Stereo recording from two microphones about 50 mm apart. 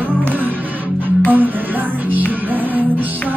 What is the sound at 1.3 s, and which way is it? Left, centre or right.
Music, right.